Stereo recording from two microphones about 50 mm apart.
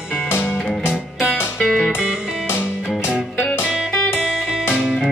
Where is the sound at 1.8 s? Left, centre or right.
Centre.